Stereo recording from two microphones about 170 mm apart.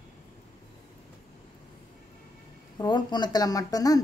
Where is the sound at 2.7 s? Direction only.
25° left (ahead or behind).